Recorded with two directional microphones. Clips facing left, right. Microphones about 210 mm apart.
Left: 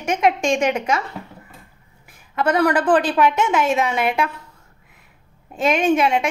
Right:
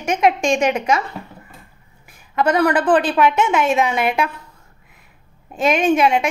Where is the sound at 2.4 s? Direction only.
10° right (ahead or behind).